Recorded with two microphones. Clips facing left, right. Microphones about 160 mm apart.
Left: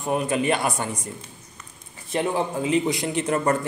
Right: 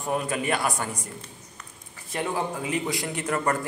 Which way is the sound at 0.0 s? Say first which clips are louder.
Left 4 dB; 20° left (ahead or behind).